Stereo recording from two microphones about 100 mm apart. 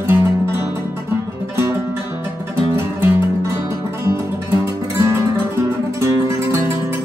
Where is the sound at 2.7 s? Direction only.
25° right (ahead or behind).